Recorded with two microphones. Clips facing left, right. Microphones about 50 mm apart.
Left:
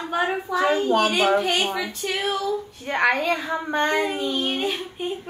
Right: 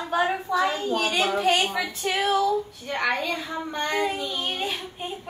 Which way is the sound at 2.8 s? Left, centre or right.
Left.